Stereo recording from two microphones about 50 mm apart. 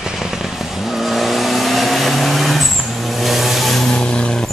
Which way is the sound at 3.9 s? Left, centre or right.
Centre.